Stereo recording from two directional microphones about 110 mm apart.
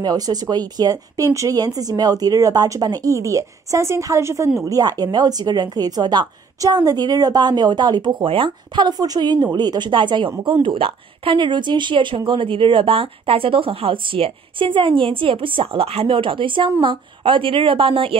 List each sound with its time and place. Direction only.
0.0 s speech: 35° right (ahead or behind); by 18.1 s 55° right (ahead or behind)